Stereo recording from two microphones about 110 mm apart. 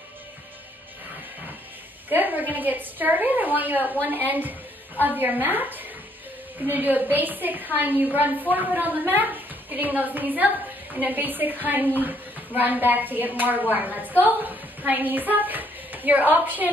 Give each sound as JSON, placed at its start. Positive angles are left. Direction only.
{"t": 2.0, "sound": "a woman's voice", "side_deg": -15}